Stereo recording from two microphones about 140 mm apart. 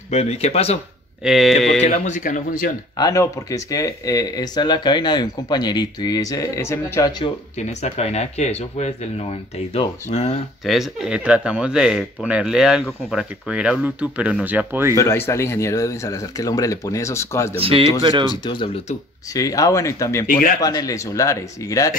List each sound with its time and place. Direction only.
0.1 s speech: 50° left (ahead or behind)
1.2 s speech: centre (ahead or behind)
1.8 s speech: 60° left (ahead or behind)
3.0 s speech: 25° left (ahead or behind)
7.5 s speech: 55° left (ahead or behind)
10.6 s speech: centre (ahead or behind)
15.0 s speech: 20° left (ahead or behind)
17.6 s speech: 40° right (ahead or behind)
18.2 s speech: 30° left (ahead or behind)
20.2 s speech: 75° left (ahead or behind)
20.6 s speech: 25° left (ahead or behind)